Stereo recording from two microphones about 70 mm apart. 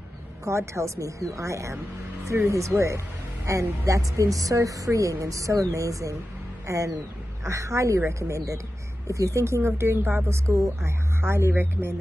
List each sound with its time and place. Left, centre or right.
0.5 s a woman's voice: right
11.1 s speech: right